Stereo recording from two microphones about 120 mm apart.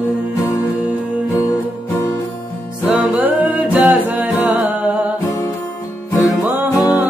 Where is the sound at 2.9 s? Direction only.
10° right (ahead or behind).